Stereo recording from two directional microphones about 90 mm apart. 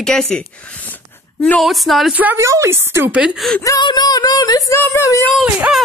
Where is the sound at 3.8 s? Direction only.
50° left (ahead or behind).